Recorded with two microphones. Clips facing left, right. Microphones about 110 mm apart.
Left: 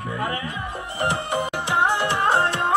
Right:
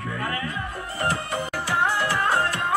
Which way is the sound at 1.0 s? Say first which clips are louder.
Left 3 dB; 20° left (ahead or behind).